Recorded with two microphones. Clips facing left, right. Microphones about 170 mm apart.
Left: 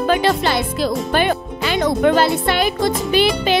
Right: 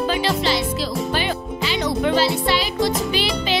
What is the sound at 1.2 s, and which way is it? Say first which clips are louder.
Music: left 5 dB; 55° left (ahead or behind).